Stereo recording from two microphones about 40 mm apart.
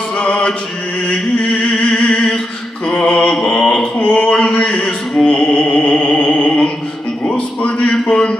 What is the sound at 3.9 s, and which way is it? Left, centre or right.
Mantra, left.